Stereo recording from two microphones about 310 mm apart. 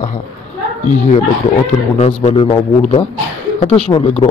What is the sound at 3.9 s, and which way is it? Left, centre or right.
Speech, centre.